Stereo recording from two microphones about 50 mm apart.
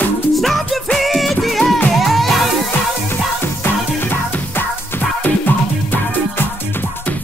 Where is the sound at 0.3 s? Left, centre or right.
Centre.